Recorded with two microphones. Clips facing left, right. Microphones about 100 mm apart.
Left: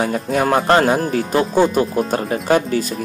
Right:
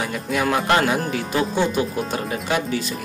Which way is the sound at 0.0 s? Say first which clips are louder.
Left 5 dB; 40° left (ahead or behind).